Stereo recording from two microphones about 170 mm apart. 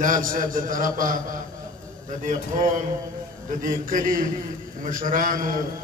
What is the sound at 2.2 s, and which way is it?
A man's voice, 50° right (ahead or behind).